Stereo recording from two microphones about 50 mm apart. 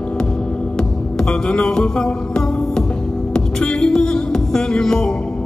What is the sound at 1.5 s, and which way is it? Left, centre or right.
Music, centre.